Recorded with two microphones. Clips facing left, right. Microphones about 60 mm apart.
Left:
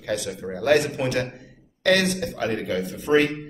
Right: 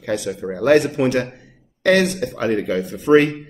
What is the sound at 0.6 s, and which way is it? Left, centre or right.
Speech, right.